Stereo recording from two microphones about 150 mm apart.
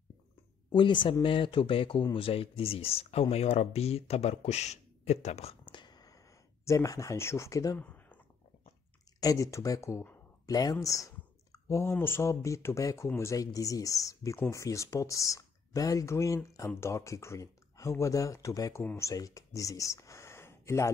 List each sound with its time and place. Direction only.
0.7 s speech: 30° left (ahead or behind)
7.8 s a sound: 10° left (ahead or behind)
9.2 s speech: 20° left (ahead or behind)